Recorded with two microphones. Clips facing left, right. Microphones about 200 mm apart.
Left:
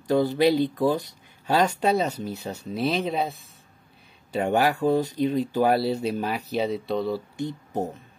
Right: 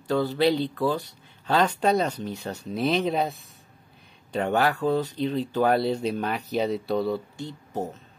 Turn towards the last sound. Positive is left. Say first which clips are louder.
# left 3 dB
turn(degrees=15)  # may be behind; listen again after turning